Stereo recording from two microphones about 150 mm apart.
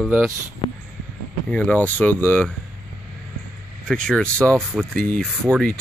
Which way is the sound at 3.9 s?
5° left (ahead or behind).